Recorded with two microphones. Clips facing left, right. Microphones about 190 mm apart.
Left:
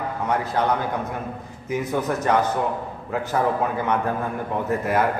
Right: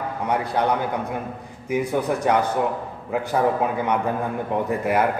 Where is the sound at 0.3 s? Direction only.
15° right (ahead or behind).